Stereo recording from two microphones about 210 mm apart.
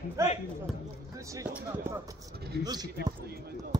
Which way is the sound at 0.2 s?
15° right (ahead or behind).